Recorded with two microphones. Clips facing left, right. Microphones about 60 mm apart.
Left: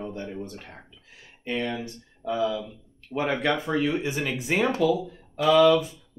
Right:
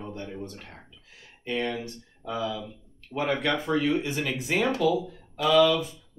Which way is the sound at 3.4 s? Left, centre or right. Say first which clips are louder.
Left 1 dB; centre.